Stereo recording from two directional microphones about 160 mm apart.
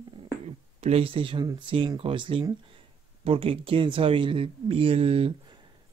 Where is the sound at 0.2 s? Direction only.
40° right (ahead or behind).